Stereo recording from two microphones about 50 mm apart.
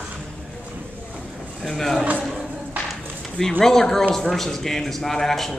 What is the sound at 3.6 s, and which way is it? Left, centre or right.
A man's voice, centre.